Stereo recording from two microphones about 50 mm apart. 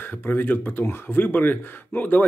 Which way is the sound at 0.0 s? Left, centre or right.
Left.